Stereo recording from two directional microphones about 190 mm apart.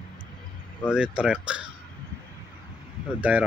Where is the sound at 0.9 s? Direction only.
5° right (ahead or behind).